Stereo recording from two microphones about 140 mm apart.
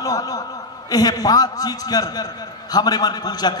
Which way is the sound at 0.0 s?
25° left (ahead or behind).